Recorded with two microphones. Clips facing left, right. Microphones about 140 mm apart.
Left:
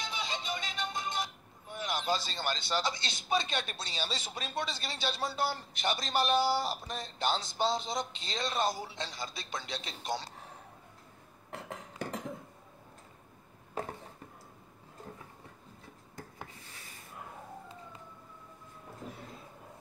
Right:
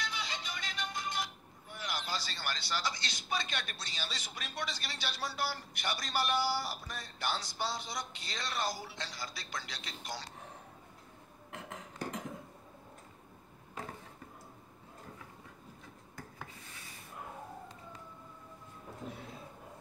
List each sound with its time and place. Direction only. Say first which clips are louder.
0.0 s music: left 3 dB; 25° left (ahead or behind)